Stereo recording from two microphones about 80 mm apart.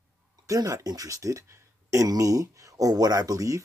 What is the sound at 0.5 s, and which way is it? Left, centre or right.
Speech, right.